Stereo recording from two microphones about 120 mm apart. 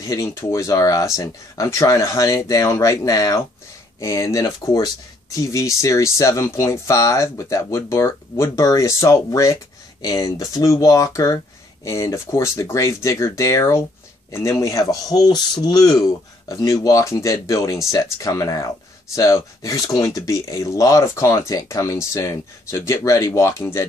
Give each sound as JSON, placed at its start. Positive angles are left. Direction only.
{"t": 0.0, "sound": "speech", "side_deg": 25}